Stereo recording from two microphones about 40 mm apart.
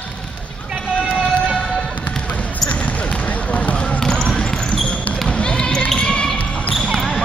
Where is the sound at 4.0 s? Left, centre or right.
Centre.